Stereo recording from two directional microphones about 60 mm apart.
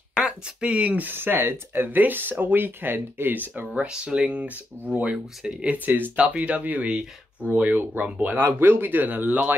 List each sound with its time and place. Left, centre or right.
0.1 s a sound: centre
0.7 s speech: right
3.6 s speech: centre
5.9 s speech: right